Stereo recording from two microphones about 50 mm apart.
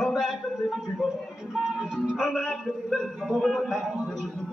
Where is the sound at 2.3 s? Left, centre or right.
Centre.